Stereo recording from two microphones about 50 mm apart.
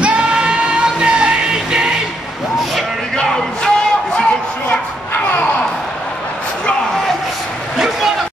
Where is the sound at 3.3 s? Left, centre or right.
Centre.